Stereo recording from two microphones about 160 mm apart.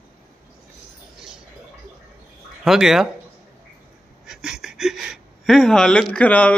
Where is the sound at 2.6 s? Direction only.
5° right (ahead or behind).